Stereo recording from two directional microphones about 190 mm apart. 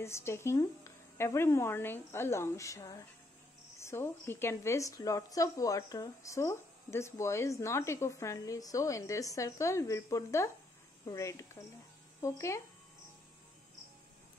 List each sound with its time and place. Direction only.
0.0 s a woman's voice: 15° left (ahead or behind)